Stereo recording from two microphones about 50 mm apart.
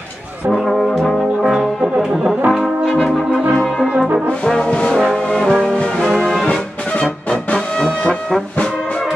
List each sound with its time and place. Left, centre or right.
0.5 s brass instrument: centre
4.8 s brass instrument: centre
5.8 s music: centre
6.1 s music: centre
6.4 s music: centre